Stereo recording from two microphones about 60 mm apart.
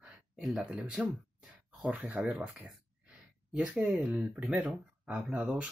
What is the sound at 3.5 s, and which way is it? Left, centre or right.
Speech, right.